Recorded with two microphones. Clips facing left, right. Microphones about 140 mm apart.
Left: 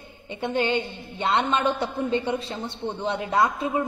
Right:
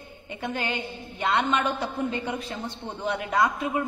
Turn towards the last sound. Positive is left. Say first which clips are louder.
# left 2 dB
turn(degrees=25)  # may be behind; listen again after turning